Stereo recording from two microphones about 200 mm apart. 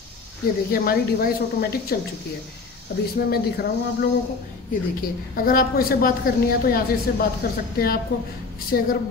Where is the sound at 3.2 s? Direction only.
50° left (ahead or behind).